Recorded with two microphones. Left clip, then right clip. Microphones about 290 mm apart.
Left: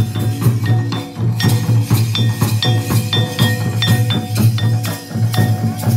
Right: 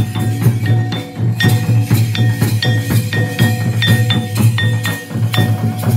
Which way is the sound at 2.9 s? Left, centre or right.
Centre.